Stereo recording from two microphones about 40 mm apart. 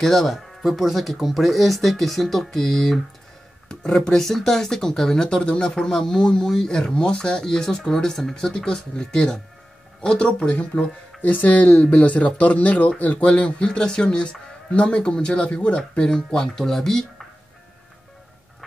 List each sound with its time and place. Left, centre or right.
0.0 s speech: centre
3.6 s speech: centre
4.2 s speech: centre; by 10.9 s left
11.1 s speech: left
13.7 s speech: centre
15.5 s speech: left; by 17.0 s centre